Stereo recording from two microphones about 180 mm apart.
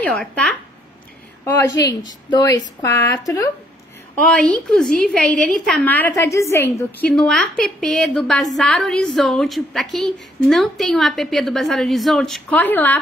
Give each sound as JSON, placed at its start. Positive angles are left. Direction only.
{"t": 0.0, "sound": "a woman's voice", "side_deg": 5}
{"t": 1.4, "sound": "a woman's voice", "side_deg": 15}
{"t": 4.2, "sound": "a woman's voice", "side_deg": 5}